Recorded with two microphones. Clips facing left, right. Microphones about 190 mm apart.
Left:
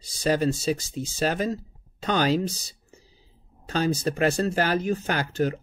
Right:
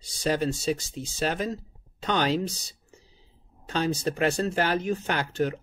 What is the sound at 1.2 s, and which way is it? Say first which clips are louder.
Speech: left 3 dB; 40° left (ahead or behind).